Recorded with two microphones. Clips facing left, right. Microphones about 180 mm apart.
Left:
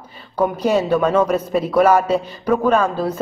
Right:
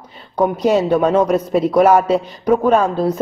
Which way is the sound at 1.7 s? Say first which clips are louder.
Right 2 dB; 20° right (ahead or behind).